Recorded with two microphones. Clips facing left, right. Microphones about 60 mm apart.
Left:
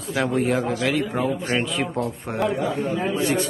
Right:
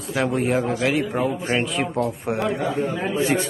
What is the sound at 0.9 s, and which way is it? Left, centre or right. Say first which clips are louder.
A man's voice: right 1 dB; centre.